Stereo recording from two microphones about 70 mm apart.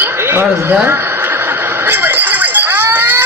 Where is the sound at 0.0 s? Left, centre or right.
Right.